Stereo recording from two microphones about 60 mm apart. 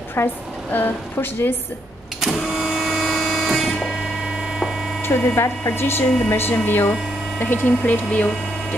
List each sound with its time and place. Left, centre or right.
0.1 s a sound: left
0.7 s speech: left
2.2 s printer: centre
5.0 s speech: left
7.6 s speech: left